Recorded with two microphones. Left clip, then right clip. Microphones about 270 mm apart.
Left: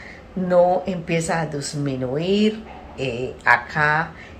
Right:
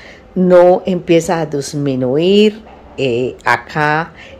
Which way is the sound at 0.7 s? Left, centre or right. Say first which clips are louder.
Right 10 dB; right.